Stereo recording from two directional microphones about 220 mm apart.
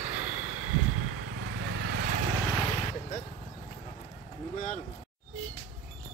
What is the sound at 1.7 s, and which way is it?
Vehicle, 55° right (ahead or behind).